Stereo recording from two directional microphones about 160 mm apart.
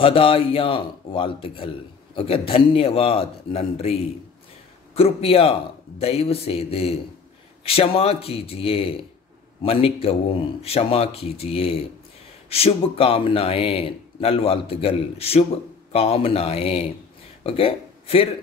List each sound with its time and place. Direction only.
0.0 s speech: 35° left (ahead or behind)